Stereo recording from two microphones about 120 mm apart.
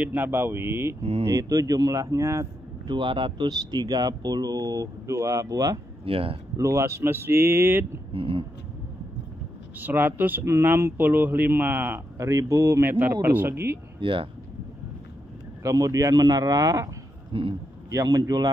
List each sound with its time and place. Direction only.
0.0 s speech: 15° right (ahead or behind)
2.9 s speech: 40° right (ahead or behind)
6.0 s speech: 50° right (ahead or behind)
6.5 s speech: 25° right (ahead or behind)
8.1 s speech: 50° right (ahead or behind)
9.8 s speech: 15° right (ahead or behind)
13.9 s speech: 45° right (ahead or behind)
15.6 s speech: 25° right (ahead or behind)
17.3 s speech: 50° right (ahead or behind)
17.9 s speech: 30° right (ahead or behind)